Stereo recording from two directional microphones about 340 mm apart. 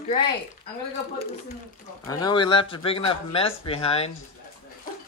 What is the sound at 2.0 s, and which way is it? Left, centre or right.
Speech, centre.